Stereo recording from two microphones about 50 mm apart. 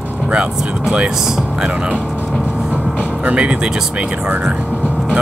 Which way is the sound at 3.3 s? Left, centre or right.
Right.